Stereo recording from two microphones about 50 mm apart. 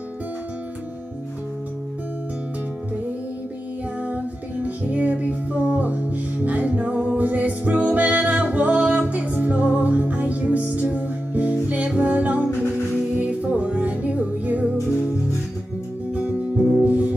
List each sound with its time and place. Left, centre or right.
4.0 s music: right
16.1 s music: right